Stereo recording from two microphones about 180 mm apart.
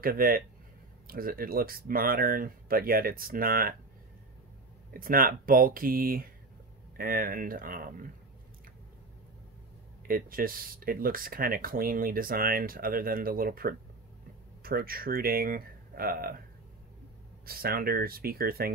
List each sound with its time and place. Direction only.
0.0 s speech: 55° right (ahead or behind)
4.9 s speech: 50° right (ahead or behind)
10.0 s speech: 55° right (ahead or behind)
17.5 s speech: 55° right (ahead or behind)